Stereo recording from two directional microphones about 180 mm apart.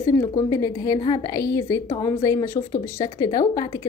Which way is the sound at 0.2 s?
20° left (ahead or behind).